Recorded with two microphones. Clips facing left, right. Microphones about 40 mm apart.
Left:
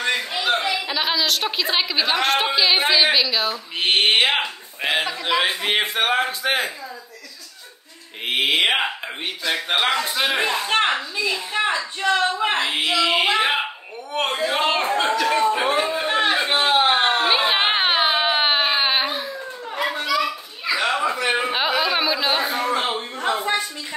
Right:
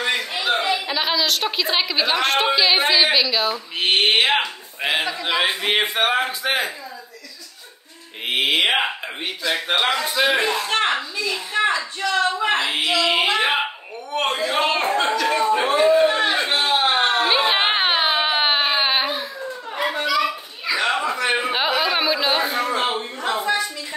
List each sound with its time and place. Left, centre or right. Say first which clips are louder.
0.3 s a woman's voice: right 1 dB; centre
8.3 s speech: even; centre
10.3 s a woman's voice: even; centre
12.6 s speech: even; centre
16.3 s a sound: left 1 dB; centre
16.5 s a sound: left 3 dB; left
17.1 s baby cry: even; centre
19.7 s children playing: right 1 dB; centre
20.6 s a sound: even; centre